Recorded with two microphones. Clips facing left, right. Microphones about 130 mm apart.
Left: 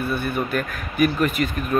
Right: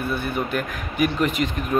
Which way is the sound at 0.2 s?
15° right (ahead or behind).